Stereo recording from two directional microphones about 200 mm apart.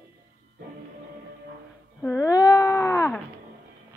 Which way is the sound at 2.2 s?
20° left (ahead or behind).